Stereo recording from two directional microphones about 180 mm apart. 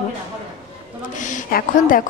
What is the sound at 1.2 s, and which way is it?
Speech, 50° left (ahead or behind).